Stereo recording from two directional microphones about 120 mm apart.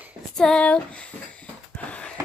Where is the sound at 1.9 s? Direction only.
10° left (ahead or behind).